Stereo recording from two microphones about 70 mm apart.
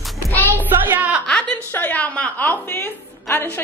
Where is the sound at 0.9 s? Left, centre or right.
Right.